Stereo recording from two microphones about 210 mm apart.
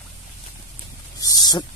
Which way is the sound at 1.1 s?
20° left (ahead or behind).